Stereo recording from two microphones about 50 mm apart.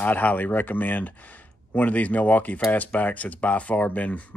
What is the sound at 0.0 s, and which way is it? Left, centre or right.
Speech, left.